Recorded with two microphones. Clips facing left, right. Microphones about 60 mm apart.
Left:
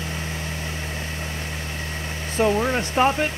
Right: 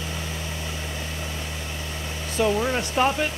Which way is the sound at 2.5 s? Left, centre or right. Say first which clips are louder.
Left 2 dB; centre.